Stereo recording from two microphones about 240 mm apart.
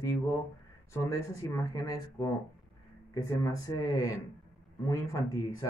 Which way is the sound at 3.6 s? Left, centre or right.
Centre.